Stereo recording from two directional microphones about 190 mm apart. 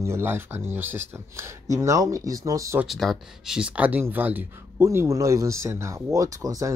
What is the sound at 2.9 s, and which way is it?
Speech, centre (ahead or behind).